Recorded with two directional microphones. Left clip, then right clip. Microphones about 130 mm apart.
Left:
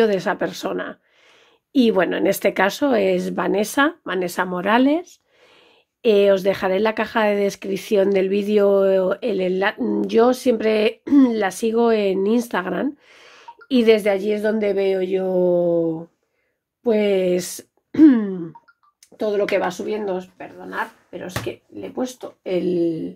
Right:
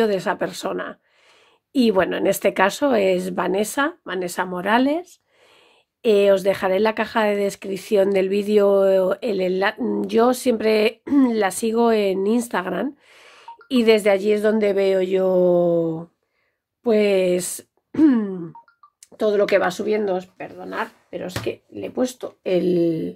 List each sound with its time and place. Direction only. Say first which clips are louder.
0.0 s speech: left 2 dB; 5° right (ahead or behind)
14.0 s speech: right 2 dB; 20° right (ahead or behind)
16.8 s speech: right 1 dB; 15° right (ahead or behind)
19.1 s speech: right 2 dB; 45° right (ahead or behind)
19.6 s speech: right 3 dB; 60° right (ahead or behind)